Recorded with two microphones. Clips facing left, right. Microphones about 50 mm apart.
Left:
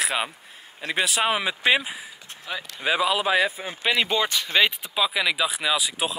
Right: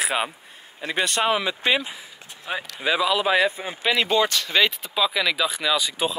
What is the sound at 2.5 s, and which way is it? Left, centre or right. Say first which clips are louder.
Speech: right 3 dB; right.